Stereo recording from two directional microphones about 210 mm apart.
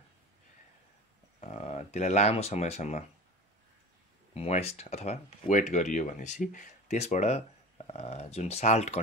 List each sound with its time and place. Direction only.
1.4 s speech: 30° left (ahead or behind)
4.3 s speech: 30° left (ahead or behind)